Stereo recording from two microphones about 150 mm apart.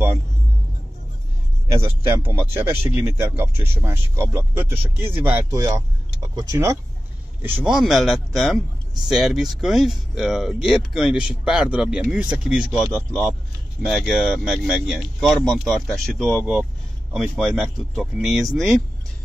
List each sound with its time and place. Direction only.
1.7 s speech: 15° right (ahead or behind)
5.5 s speech: 20° right (ahead or behind)
7.4 s speech: 10° right (ahead or behind)